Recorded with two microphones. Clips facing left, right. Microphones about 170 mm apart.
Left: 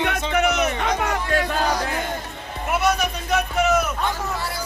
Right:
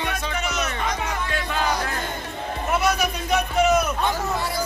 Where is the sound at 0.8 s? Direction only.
70° left (ahead or behind).